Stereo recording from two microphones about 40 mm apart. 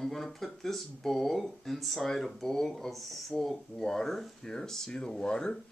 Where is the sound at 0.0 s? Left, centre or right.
Centre.